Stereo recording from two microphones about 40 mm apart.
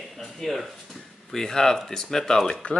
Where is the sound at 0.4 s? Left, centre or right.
Centre.